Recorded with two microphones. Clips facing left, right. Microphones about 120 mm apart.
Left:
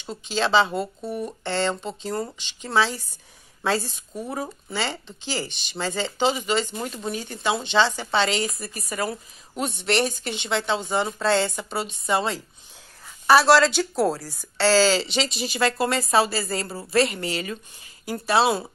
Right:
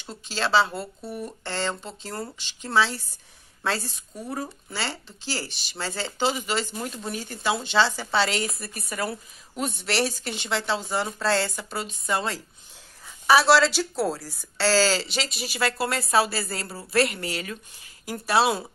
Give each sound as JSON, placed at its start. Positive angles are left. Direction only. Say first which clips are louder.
{"t": 0.1, "sound": "a woman's voice", "louder": "left 2 dB", "side_deg": -5}
{"t": 0.7, "sound": "speech", "louder": "left 5 dB", "side_deg": 25}
{"t": 1.4, "sound": "a woman's voice", "louder": "left 5 dB", "side_deg": -5}
{"t": 6.7, "sound": "speech", "louder": "left 2 dB", "side_deg": 15}
{"t": 7.0, "sound": "a woman's voice", "louder": "left 3 dB", "side_deg": 0}